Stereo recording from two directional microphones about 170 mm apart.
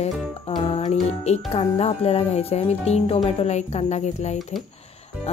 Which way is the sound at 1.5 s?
35° left (ahead or behind).